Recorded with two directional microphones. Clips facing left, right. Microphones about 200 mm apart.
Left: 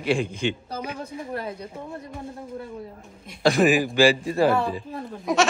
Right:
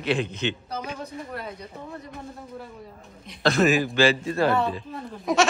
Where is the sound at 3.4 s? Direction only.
15° left (ahead or behind).